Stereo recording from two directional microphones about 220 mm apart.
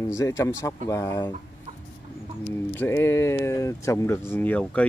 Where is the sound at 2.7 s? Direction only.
10° left (ahead or behind).